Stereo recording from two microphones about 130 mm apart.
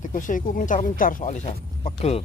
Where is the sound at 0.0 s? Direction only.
85° left; by 2.2 s 55° left (ahead or behind).